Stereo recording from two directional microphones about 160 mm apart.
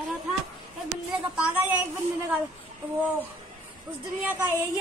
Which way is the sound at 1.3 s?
10° right (ahead or behind).